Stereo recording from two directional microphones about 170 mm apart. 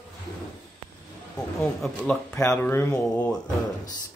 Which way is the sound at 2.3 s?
15° left (ahead or behind).